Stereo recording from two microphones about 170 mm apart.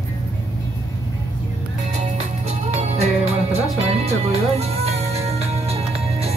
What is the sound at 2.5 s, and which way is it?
Music, 40° right (ahead or behind).